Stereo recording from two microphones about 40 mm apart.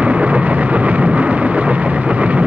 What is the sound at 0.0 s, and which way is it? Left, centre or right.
Vehicle, right.